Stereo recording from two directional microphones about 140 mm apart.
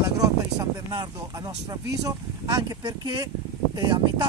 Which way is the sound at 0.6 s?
25° right (ahead or behind).